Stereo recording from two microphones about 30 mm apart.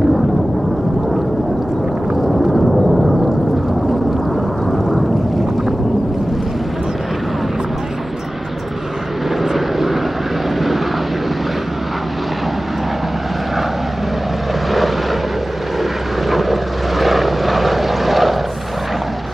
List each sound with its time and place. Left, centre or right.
2.2 s a sound: centre
4.6 s vehicle: centre
9.4 s vehicle: centre
15.8 s vehicle: centre